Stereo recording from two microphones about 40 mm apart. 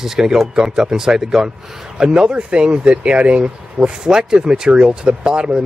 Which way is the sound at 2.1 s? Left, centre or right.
Right.